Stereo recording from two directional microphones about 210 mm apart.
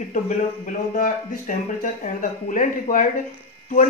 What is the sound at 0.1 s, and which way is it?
A woman's voice, 40° left (ahead or behind).